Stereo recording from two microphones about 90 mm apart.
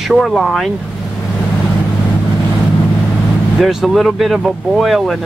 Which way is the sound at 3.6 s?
Centre (ahead or behind).